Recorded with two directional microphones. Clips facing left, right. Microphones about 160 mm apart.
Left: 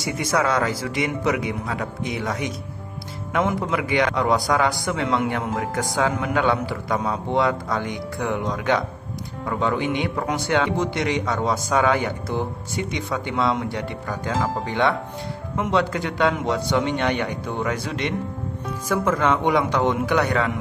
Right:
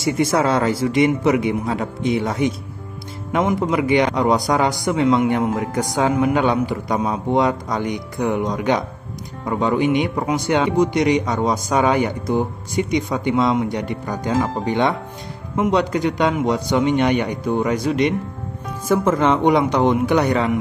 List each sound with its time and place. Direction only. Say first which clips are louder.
0.0 s a man's voice: right 5 dB; 25° right (ahead or behind)